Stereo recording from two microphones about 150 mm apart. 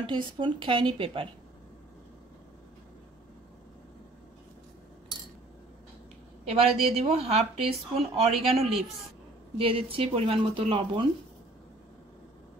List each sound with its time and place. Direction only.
0.0 s speech: 30° right (ahead or behind)
6.4 s speech: 40° right (ahead or behind)